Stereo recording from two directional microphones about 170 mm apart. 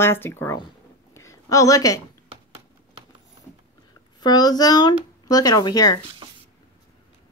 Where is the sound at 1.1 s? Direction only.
20° left (ahead or behind).